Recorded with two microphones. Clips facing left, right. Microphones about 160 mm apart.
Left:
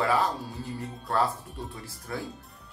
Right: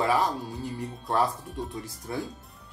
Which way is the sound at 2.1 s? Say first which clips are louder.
Right 2 dB; 20° right (ahead or behind).